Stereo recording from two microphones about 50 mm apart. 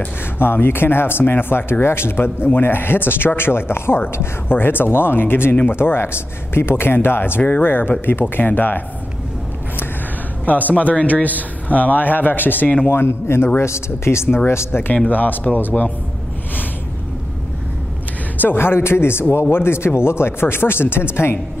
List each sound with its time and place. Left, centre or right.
0.4 s speech: left
10.4 s speech: left
12.9 s speech: left
13.6 s speech: left
15.0 s speech: left
18.4 s speech: left